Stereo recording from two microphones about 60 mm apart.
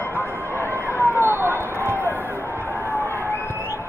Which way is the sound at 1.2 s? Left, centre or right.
Right.